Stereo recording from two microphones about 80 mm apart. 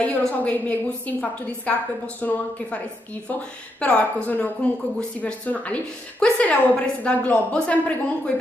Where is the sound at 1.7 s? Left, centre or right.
Centre.